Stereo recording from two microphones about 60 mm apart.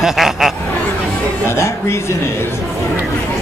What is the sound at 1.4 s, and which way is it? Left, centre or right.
Speech, left.